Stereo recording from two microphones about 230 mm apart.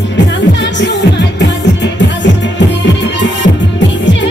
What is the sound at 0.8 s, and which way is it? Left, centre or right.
Music, left.